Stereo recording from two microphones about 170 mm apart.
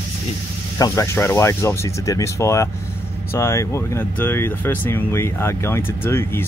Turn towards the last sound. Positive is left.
turn(degrees=15)  # may be behind; listen again after turning